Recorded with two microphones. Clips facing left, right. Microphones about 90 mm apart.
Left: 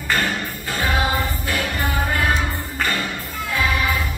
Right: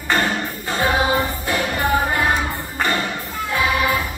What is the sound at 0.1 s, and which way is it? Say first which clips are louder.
Music: right 3 dB; 25° right (ahead or behind).